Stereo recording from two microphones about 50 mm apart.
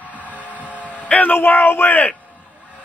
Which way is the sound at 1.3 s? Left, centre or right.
Left.